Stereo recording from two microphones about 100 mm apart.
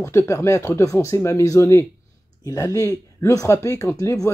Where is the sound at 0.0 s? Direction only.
25° left (ahead or behind).